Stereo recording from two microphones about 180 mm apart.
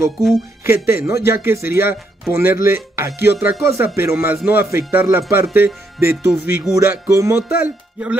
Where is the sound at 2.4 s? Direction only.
55° left (ahead or behind).